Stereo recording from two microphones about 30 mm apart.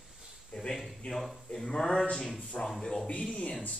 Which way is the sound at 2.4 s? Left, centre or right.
Left.